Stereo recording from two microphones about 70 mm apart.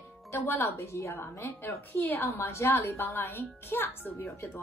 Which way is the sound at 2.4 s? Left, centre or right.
Left.